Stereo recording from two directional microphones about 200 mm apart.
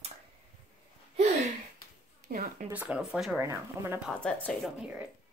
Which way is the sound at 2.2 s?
45° right (ahead or behind).